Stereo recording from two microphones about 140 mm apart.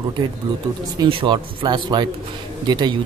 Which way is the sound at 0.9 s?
35° right (ahead or behind).